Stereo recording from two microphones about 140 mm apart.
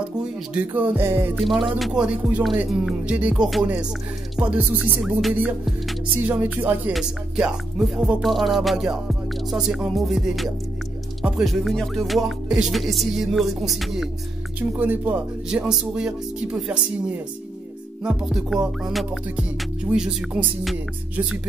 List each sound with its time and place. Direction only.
0.7 s speech: 15° right (ahead or behind)
1.3 s music: centre (ahead or behind)
1.8 s speech: 5° right (ahead or behind)
2.8 s music: 5° right (ahead or behind)
4.4 s speech: 10° right (ahead or behind)
6.2 s speech: 10° right (ahead or behind)
6.9 s music: 5° right (ahead or behind)
14.7 s speech: 15° right (ahead or behind)
18.0 s music: 5° right (ahead or behind)